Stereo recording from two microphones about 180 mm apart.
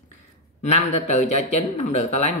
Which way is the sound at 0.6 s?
40° left (ahead or behind).